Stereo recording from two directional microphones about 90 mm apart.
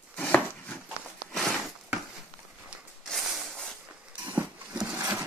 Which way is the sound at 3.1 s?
5° left (ahead or behind).